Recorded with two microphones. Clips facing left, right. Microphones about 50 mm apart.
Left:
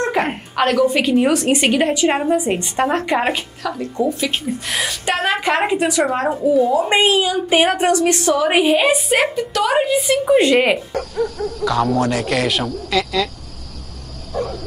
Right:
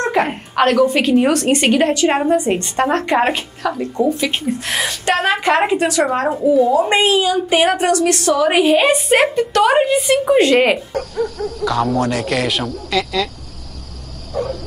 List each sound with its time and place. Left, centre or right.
0.6 s a woman's voice: centre
3.6 s a woman's voice: centre
10.1 s speech: centre
10.4 s a woman's voice: centre